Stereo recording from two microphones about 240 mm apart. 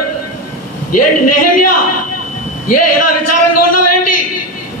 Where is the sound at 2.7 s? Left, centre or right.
Left.